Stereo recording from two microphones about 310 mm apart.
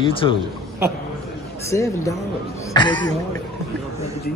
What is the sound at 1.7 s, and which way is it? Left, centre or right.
A man's voice, centre.